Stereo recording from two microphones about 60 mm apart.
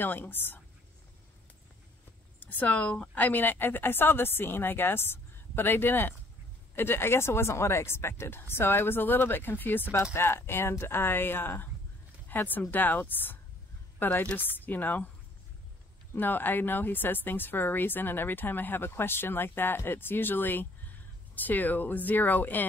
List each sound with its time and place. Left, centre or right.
0.0 s speech: left
2.4 s speech: left
16.2 s speech: left